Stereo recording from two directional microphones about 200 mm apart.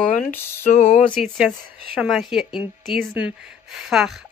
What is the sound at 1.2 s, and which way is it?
A woman's voice, centre (ahead or behind).